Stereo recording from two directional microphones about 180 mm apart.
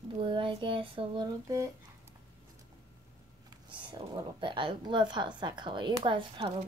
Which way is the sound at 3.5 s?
25° right (ahead or behind).